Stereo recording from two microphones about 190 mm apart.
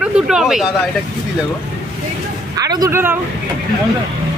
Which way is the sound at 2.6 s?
20° right (ahead or behind).